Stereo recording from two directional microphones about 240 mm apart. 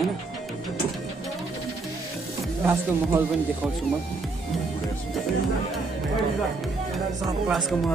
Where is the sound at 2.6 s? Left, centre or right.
Centre.